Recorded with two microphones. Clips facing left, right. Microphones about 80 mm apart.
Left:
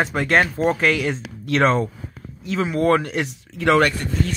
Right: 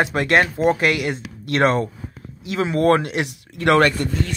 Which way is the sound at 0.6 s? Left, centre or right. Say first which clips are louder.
Right 2 dB; right.